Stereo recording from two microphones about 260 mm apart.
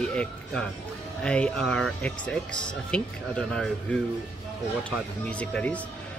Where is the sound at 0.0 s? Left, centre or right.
Centre.